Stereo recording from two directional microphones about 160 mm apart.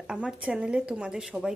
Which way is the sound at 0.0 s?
5° right (ahead or behind).